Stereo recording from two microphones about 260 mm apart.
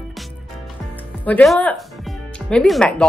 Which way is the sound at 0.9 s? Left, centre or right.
Centre.